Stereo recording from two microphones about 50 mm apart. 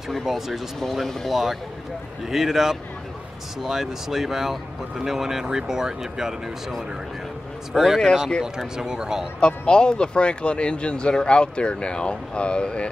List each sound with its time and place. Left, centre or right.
0.1 s speech: centre
8.0 s speech: centre
8.7 s speech: centre
9.4 s speech: centre